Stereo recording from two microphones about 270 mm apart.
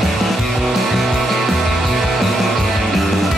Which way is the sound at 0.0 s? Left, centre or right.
Centre.